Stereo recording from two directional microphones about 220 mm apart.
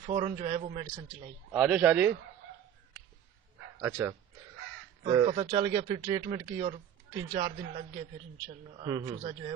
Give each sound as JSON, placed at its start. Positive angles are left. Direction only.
{"t": 0.0, "sound": "speech", "side_deg": -25}
{"t": 1.5, "sound": "a man's voice", "side_deg": -5}
{"t": 3.8, "sound": "a man's voice", "side_deg": -10}
{"t": 8.8, "sound": "a man's voice", "side_deg": -15}